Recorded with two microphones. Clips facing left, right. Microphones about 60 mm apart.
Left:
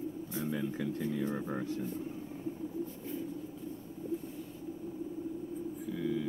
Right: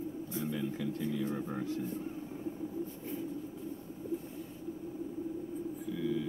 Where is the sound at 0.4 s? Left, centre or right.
Left.